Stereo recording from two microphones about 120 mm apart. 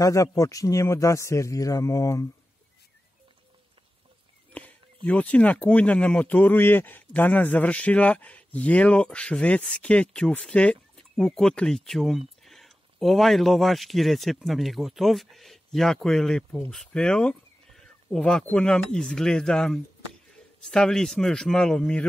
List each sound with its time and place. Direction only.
0.0 s speech: 25° left (ahead or behind)
4.5 s speech: 10° left (ahead or behind)